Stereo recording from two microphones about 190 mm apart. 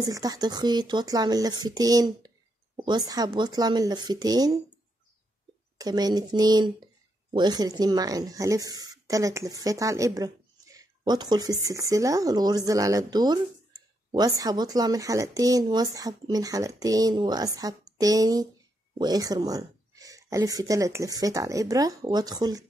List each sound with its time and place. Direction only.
0.0 s speech: 20° right (ahead or behind)
5.8 s speech: 20° right (ahead or behind)